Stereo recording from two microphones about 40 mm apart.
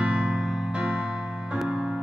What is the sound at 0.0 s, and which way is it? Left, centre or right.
Music, right.